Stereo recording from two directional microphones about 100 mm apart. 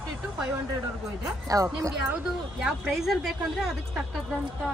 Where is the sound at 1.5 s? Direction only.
35° right (ahead or behind).